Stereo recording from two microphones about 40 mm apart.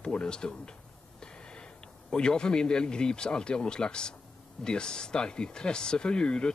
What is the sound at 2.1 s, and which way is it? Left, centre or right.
Speech, left.